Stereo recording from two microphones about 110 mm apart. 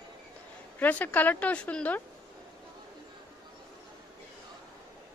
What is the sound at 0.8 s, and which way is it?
A woman's voice, 15° left (ahead or behind).